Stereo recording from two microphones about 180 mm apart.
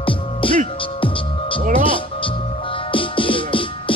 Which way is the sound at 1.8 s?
30° left (ahead or behind).